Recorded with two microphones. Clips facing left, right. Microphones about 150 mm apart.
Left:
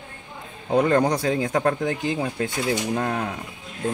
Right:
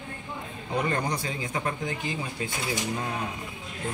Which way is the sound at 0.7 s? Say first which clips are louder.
Left 9 dB; 55° left (ahead or behind).